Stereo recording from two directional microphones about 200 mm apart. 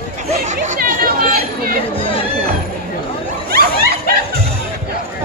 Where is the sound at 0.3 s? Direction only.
35° right (ahead or behind).